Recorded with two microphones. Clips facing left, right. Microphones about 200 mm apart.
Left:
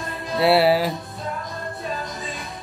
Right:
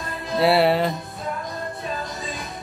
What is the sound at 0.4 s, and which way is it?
Music, centre (ahead or behind).